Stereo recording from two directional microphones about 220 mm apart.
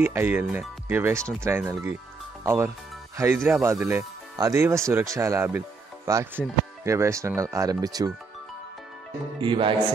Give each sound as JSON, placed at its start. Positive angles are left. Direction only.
{"t": 0.0, "sound": "speech", "side_deg": -10}
{"t": 9.4, "sound": "music", "side_deg": -25}